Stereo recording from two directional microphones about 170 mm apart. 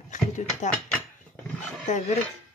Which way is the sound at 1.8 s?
40° left (ahead or behind).